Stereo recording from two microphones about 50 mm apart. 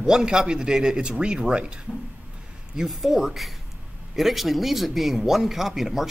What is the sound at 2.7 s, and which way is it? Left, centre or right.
Speech, centre.